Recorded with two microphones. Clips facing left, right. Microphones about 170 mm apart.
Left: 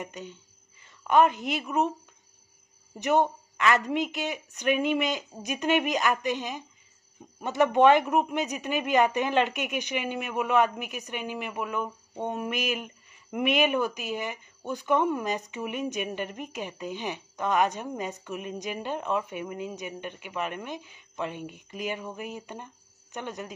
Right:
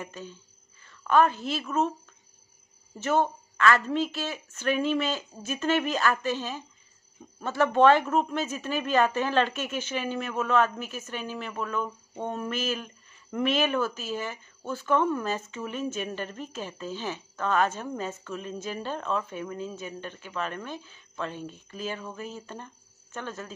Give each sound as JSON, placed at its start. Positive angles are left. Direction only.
{"t": 0.0, "sound": "a woman's voice", "side_deg": 20}
{"t": 3.0, "sound": "speech", "side_deg": 15}